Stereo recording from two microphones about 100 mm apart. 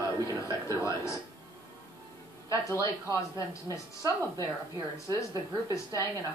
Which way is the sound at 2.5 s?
30° left (ahead or behind).